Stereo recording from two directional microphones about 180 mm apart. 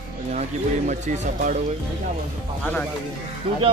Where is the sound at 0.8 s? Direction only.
40° right (ahead or behind).